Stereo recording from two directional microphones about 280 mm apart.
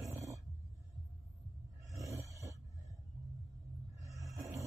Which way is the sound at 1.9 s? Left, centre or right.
Centre.